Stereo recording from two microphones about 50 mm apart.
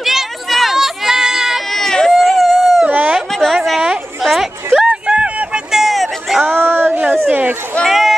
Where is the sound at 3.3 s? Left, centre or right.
Centre.